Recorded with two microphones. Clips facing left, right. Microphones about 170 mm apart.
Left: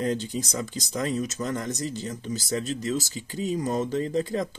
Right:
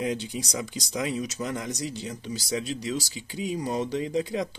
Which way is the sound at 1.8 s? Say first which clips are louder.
Left 2 dB; 45° left (ahead or behind).